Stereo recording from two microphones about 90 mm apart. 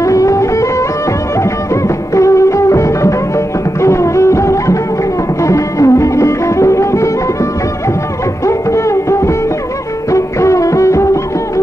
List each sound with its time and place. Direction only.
0.0 s music: 35° left (ahead or behind)
2.1 s music: 35° left (ahead or behind)
8.5 s music: 35° left (ahead or behind)